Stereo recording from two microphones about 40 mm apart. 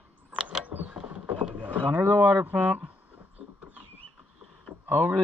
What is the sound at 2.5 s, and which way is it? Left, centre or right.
Speech, right.